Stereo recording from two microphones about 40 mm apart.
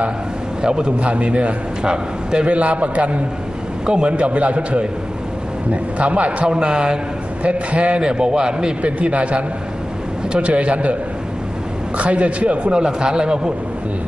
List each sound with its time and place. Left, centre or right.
0.6 s speech: centre
0.9 s a man's voice: right
3.8 s speech: right
4.2 s a man's voice: right
6.4 s speech: right
7.4 s a man's voice: right
8.0 s speech: right
8.8 s a man's voice: right
12.0 s a man's voice: right
12.7 s speech: right